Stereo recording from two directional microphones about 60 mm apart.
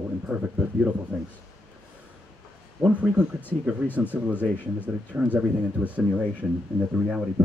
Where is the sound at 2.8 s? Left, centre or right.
Right.